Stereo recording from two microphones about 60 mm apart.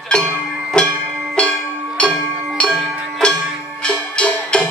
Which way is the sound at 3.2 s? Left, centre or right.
Centre.